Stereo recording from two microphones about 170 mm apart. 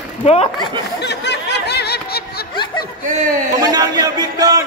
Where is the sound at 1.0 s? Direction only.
85° left; by 2.5 s 65° left (ahead or behind).